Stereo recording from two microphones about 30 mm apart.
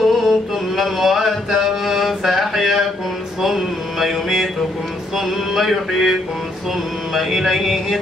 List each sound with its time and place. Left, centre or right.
0.0 s mantra: centre
3.4 s carnatic music: centre
5.1 s a sound: centre
7.2 s music: centre